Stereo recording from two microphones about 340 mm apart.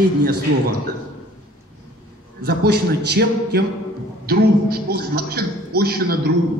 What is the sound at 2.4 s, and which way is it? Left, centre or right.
A man's voice, right.